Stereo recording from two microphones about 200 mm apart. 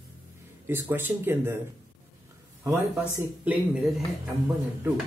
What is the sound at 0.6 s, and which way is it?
Speech, 10° right (ahead or behind).